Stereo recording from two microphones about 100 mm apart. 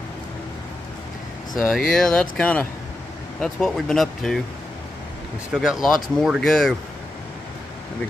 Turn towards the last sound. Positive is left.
turn(degrees=0)  # may be behind; listen again after turning